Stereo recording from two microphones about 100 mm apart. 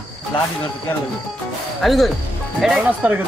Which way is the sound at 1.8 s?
Centre (ahead or behind).